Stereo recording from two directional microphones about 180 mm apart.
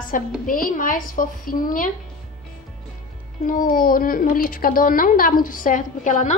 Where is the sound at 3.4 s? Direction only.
50° left (ahead or behind).